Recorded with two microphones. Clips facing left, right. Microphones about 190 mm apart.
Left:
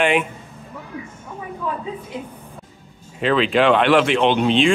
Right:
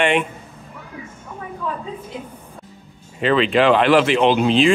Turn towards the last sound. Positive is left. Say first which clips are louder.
# right 1 dB
turn(degrees=0)  # may be behind; listen again after turning